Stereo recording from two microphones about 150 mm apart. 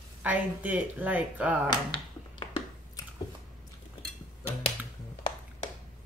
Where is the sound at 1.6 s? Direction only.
30° left (ahead or behind).